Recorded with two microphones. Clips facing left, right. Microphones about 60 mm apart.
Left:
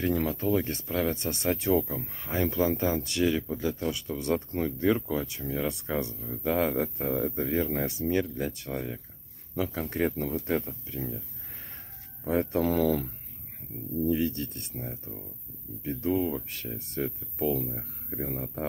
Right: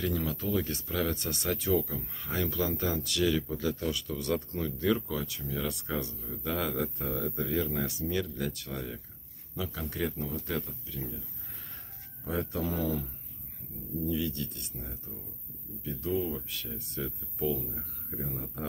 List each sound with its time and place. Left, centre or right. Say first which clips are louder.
0.2 s speech: left 5 dB; left
9.6 s speech: left 6 dB; left
12.3 s speech: left 7 dB; left
12.6 s speech: left 7 dB; left
14.0 s speech: left 5 dB; left
15.8 s speech: left 4 dB; left